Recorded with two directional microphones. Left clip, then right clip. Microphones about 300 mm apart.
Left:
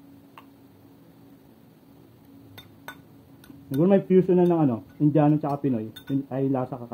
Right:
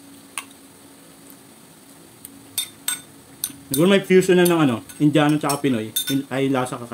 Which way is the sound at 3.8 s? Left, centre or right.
Centre.